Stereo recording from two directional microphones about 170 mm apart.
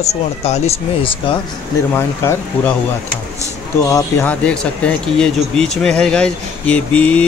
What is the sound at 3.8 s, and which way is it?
Speech, 20° left (ahead or behind).